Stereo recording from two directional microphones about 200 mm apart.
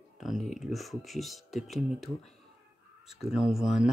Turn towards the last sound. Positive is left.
turn(degrees=0)  # may be behind; listen again after turning